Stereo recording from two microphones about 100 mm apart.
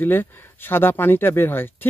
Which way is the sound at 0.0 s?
20° left (ahead or behind).